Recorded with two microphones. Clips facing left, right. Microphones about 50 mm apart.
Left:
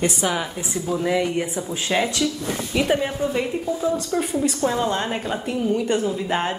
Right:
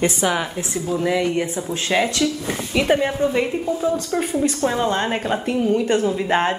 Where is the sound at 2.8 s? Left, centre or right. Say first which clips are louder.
Right 3 dB; right.